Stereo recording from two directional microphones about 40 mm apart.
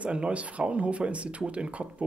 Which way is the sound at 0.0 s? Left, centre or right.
Right.